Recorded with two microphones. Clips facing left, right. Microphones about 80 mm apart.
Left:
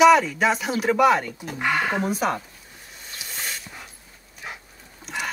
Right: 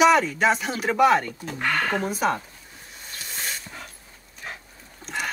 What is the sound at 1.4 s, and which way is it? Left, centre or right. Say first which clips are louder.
Speech: left 1 dB; centre.